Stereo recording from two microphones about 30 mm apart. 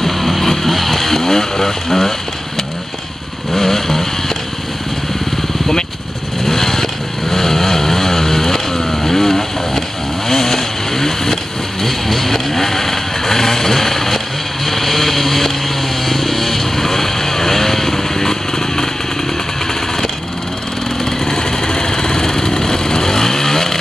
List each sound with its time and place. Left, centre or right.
0.0 s vehicle: centre
3.5 s vehicle: centre
6.4 s vehicle: centre
21.0 s vehicle: left